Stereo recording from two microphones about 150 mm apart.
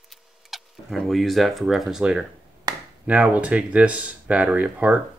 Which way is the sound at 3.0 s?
10° right (ahead or behind).